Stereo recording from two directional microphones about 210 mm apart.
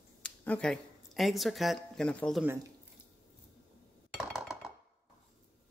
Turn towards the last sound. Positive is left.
turn(degrees=0)  # may be behind; listen again after turning